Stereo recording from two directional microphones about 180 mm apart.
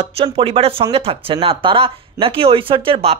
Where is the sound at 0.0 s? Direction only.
30° right (ahead or behind).